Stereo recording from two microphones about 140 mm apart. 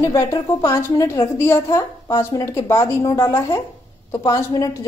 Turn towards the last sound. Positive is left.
turn(degrees=25)  # may be behind; listen again after turning